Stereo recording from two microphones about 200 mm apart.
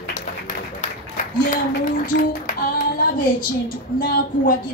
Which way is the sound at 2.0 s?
40° left (ahead or behind).